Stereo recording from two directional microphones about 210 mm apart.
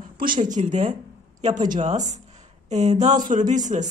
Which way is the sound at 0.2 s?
40° right (ahead or behind).